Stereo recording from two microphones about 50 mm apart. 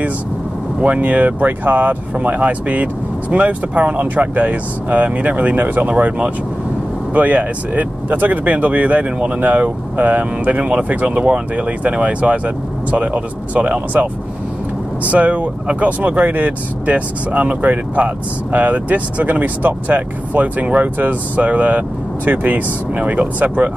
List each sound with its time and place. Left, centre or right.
0.7 s speech: right
7.2 s speech: right
15.0 s speech: right